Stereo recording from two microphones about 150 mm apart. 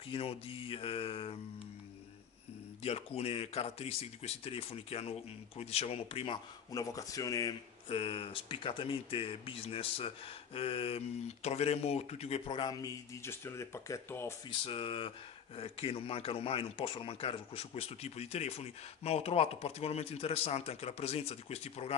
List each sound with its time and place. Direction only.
0.1 s speech: 40° left (ahead or behind)
2.8 s speech: 40° left (ahead or behind)
6.7 s speech: 25° left (ahead or behind)
7.9 s speech: 40° left (ahead or behind); by 14.3 s 20° left (ahead or behind)
14.6 s speech: 35° left (ahead or behind)